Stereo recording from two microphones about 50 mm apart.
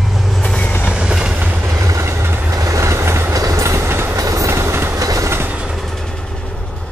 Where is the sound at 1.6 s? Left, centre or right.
Right.